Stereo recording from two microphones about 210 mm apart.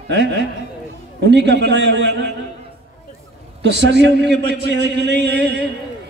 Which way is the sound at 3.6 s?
55° right (ahead or behind).